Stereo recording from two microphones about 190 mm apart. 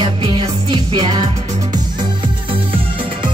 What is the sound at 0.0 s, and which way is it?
Music, 25° right (ahead or behind).